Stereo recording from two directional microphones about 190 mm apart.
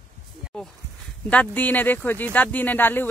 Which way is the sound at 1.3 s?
10° left (ahead or behind).